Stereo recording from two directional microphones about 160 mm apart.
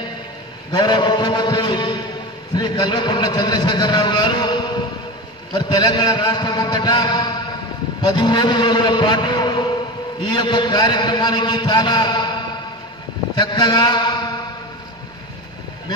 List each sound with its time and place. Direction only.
0.7 s a man's voice: 30° left (ahead or behind)
13.4 s mantra: 25° left (ahead or behind)